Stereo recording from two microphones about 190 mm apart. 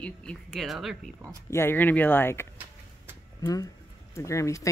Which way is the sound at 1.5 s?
10° left (ahead or behind).